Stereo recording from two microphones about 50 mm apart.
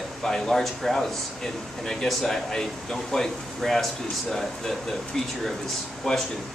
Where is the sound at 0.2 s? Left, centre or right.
Centre.